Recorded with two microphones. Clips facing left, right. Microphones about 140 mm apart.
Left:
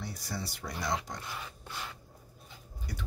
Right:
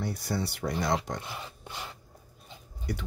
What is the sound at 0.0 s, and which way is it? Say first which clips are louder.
Speech: right 8 dB; 60° right (ahead or behind).